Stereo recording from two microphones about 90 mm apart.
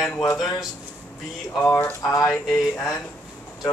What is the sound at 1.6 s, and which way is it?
Speech, 30° left (ahead or behind).